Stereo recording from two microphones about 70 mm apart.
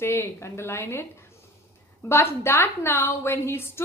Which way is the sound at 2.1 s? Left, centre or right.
Left.